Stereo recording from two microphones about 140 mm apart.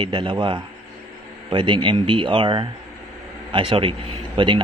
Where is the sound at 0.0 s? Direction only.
35° right (ahead or behind).